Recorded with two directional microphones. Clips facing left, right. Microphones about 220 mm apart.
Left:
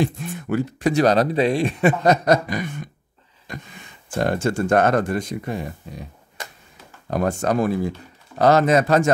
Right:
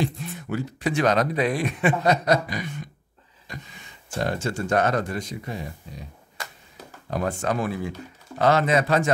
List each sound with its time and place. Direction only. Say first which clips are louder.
0.0 s speech: left 4 dB; 55° left (ahead or behind); by 1.8 s 30° left (ahead or behind)
1.8 s speech: left 3 dB; 45° left (ahead or behind)
7.1 s speech: left 5 dB; 45° left (ahead or behind)